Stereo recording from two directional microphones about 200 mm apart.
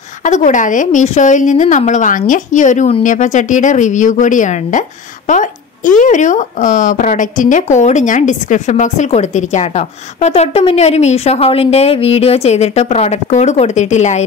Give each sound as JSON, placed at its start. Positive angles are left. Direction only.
{"t": 0.2, "sound": "a woman's voice", "side_deg": 40}
{"t": 5.9, "sound": "a woman's voice", "side_deg": 40}